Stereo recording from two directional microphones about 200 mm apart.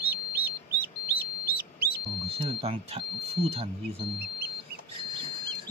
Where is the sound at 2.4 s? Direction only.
30° right (ahead or behind).